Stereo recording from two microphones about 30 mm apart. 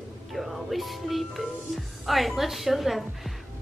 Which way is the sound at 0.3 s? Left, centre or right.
Centre.